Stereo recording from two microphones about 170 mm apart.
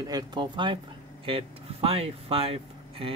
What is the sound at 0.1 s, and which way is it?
Speech, 25° right (ahead or behind).